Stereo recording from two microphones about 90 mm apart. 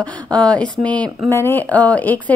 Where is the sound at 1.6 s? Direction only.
15° left (ahead or behind).